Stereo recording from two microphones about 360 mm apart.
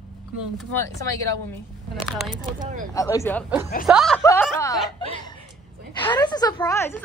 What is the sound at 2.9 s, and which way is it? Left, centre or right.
A woman's voice, centre.